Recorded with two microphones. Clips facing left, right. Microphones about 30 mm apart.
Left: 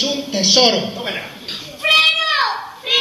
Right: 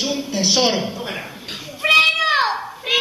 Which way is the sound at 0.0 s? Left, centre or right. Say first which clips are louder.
Left 2 dB; left.